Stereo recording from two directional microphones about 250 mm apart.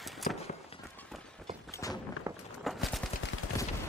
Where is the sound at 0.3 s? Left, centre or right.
Left.